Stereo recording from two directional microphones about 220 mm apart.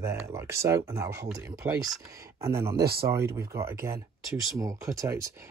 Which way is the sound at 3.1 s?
10° right (ahead or behind).